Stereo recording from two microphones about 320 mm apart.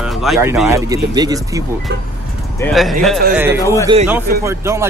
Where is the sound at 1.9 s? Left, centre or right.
Right.